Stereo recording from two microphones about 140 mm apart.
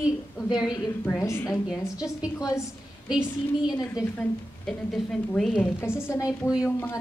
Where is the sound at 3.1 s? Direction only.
5° right (ahead or behind).